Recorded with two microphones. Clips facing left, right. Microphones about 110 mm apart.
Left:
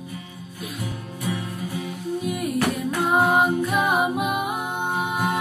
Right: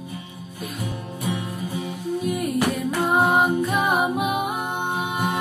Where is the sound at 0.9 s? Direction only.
20° right (ahead or behind).